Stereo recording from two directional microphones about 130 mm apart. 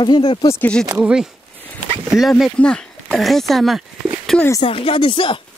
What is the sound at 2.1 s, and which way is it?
Speech, centre (ahead or behind).